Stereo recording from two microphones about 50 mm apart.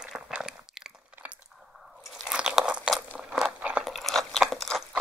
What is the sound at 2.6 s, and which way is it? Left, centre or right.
Crunch, centre.